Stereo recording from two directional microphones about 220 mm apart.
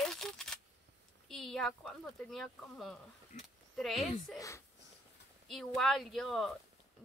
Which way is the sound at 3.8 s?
Centre (ahead or behind).